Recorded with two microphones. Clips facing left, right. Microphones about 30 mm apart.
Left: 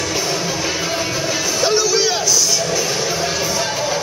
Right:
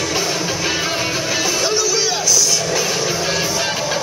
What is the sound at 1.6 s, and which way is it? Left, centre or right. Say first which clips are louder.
Music: left 2 dB; centre.